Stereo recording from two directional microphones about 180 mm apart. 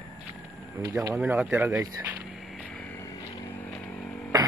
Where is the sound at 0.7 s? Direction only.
20° right (ahead or behind).